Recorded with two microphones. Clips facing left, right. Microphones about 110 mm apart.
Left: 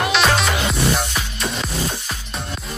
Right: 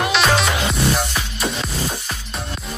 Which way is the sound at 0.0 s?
Centre (ahead or behind).